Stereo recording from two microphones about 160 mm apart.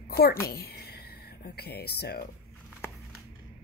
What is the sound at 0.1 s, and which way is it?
A woman's voice, 75° left (ahead or behind).